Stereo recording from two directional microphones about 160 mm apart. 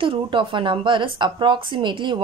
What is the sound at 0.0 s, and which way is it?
A woman's voice, 30° right (ahead or behind).